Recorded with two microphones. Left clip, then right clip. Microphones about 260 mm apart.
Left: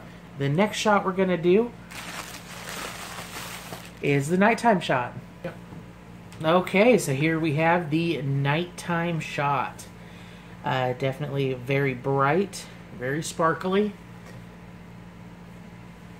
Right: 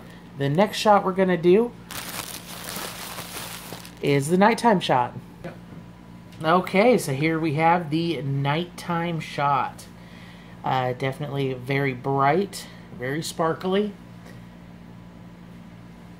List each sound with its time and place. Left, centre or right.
0.4 s speech: right
4.0 s speech: right
6.4 s speech: right